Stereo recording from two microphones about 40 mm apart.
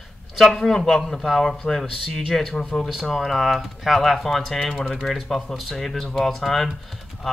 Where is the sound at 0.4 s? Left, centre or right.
Centre.